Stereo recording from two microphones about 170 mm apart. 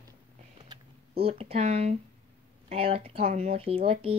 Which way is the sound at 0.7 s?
35° right (ahead or behind).